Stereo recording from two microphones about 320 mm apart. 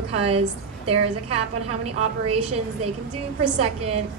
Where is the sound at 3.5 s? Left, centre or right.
Centre.